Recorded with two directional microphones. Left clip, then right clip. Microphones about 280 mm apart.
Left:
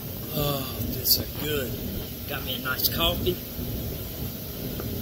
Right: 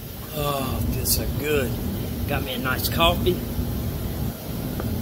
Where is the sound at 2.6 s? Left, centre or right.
Centre.